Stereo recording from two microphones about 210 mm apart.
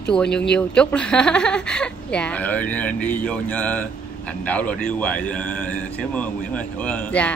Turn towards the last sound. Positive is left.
turn(degrees=5)  # may be behind; listen again after turning